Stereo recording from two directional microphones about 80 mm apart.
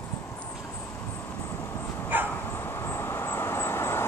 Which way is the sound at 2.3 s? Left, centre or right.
Left.